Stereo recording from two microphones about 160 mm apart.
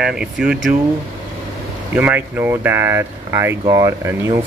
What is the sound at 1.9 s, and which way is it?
Speech, 10° right (ahead or behind).